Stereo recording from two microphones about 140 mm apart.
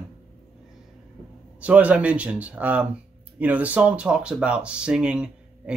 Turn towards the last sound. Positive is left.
turn(degrees=-5)  # may be behind; listen again after turning